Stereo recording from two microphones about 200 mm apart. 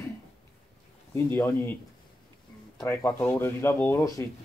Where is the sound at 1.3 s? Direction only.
10° left (ahead or behind).